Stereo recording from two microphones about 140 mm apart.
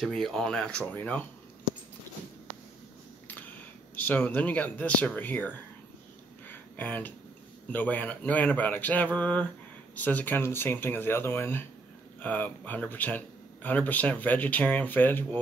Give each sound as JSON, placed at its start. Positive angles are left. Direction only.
{"t": 0.0, "sound": "speech", "side_deg": 0}
{"t": 3.3, "sound": "speech", "side_deg": 10}
{"t": 6.4, "sound": "a sound", "side_deg": 10}
{"t": 7.7, "sound": "speech", "side_deg": 10}